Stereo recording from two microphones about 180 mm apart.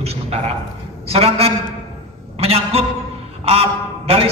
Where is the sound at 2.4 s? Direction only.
35° right (ahead or behind).